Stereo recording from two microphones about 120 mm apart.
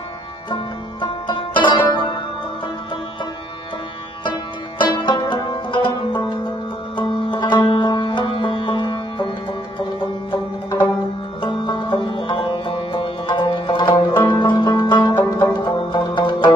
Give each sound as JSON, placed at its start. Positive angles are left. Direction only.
{"t": 1.2, "sound": "music", "side_deg": 40}
{"t": 5.0, "sound": "music", "side_deg": 40}
{"t": 10.3, "sound": "music", "side_deg": 40}